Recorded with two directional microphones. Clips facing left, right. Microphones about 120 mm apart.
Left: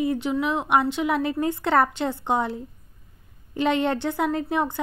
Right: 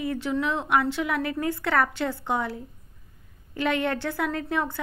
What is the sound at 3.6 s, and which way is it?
A woman's voice, 20° left (ahead or behind).